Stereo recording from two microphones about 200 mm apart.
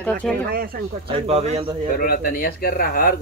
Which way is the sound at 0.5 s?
45° right (ahead or behind).